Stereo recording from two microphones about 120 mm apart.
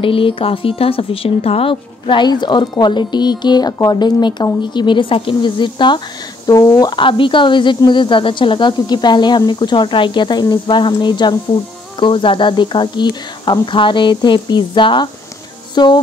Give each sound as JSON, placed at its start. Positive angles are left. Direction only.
{"t": 0.0, "sound": "speech", "side_deg": 45}